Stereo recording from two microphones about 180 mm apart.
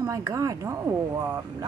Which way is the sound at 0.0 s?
20° right (ahead or behind).